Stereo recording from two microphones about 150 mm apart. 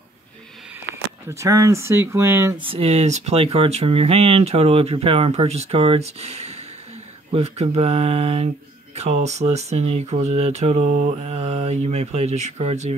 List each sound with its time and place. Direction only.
0.9 s speech: 20° right (ahead or behind)
2.5 s speech: 35° right (ahead or behind)